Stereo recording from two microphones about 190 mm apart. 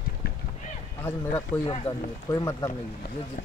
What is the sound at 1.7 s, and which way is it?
Speech, 25° left (ahead or behind).